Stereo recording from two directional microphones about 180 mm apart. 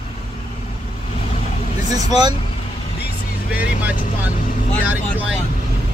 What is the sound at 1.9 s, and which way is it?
Speech, 20° right (ahead or behind).